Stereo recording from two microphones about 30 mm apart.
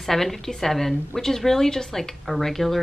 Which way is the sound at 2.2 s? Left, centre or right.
Centre.